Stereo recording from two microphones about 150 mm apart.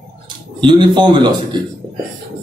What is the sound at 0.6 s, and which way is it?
Speech, 30° right (ahead or behind).